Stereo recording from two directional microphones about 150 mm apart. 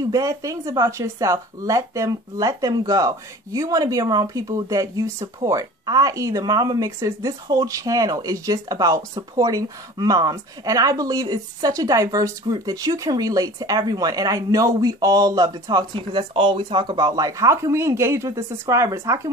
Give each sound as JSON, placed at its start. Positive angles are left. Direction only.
{"t": 0.0, "sound": "speech", "side_deg": -25}